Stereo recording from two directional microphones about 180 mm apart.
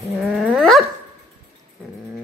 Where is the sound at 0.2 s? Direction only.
Centre (ahead or behind).